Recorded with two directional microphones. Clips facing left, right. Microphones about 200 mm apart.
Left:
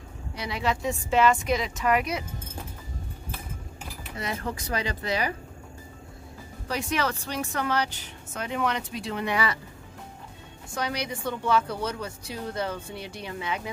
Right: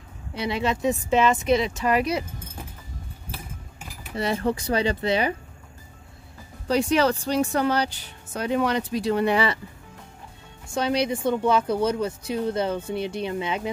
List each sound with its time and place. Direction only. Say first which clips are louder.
0.4 s speech: right 4 dB; 25° right (ahead or behind)
4.2 s speech: right 8 dB; 30° right (ahead or behind)
6.7 s speech: right 8 dB; 30° right (ahead or behind)
10.7 s speech: right 7 dB; 25° right (ahead or behind)